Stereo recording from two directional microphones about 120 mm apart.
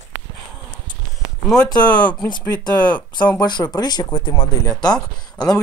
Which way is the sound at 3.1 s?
40° left (ahead or behind).